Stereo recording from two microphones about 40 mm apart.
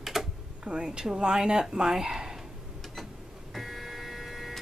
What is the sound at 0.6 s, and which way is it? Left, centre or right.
Speech, right.